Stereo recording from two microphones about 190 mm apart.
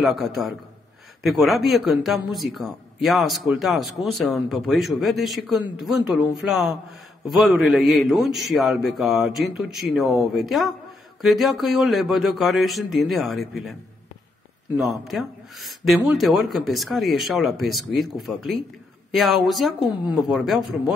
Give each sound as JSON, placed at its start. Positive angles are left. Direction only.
{"t": 0.0, "sound": "a man's voice", "side_deg": 0}
{"t": 15.0, "sound": "a man's voice", "side_deg": 0}